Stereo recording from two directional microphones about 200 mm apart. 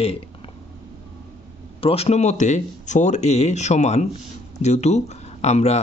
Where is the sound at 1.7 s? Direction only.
30° left (ahead or behind).